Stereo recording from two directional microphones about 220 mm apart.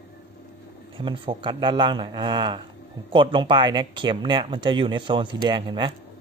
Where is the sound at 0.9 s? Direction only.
20° right (ahead or behind).